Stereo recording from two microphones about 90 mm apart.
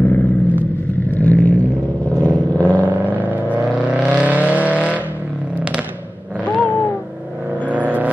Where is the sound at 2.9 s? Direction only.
20° right (ahead or behind).